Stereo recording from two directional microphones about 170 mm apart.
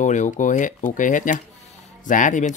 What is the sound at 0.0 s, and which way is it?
Speech, 45° left (ahead or behind).